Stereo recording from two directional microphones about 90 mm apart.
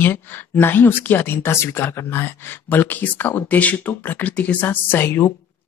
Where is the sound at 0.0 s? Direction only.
25° left (ahead or behind).